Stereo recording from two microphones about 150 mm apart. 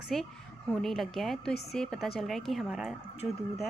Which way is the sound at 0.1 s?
5° left (ahead or behind).